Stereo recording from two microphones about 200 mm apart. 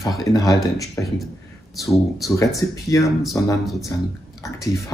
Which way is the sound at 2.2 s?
15° left (ahead or behind).